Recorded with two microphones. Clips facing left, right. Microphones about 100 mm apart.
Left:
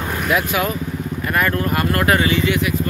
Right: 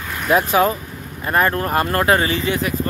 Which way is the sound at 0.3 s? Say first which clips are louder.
Right 5 dB; 35° right (ahead or behind).